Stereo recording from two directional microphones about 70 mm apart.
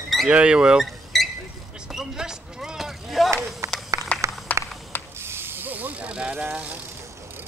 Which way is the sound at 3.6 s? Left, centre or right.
Right.